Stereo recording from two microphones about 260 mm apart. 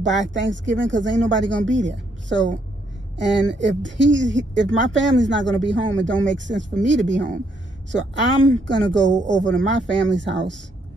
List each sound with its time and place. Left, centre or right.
0.0 s speech: right